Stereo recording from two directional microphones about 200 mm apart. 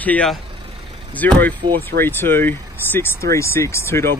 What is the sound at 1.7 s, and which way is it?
Speech, 50° right (ahead or behind).